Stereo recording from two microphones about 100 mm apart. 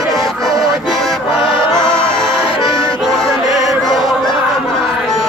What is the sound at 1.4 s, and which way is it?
Music, 50° left (ahead or behind).